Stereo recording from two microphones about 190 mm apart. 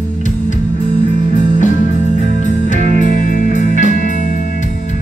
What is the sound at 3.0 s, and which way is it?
Music, 45° left (ahead or behind).